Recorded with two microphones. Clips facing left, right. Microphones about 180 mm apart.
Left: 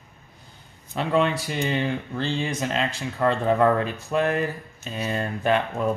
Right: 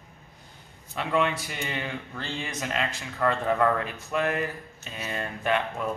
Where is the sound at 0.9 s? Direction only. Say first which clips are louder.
Left 4 dB; 35° left (ahead or behind).